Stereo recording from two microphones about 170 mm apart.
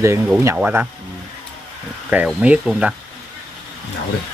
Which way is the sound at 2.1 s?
5° right (ahead or behind).